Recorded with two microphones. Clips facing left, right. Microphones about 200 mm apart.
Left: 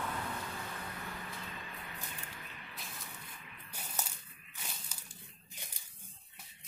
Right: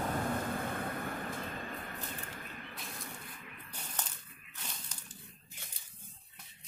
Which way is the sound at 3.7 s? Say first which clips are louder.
Left 1 dB; 10° left (ahead or behind).